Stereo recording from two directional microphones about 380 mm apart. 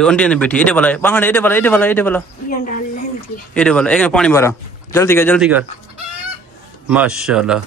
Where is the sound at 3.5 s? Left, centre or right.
Centre.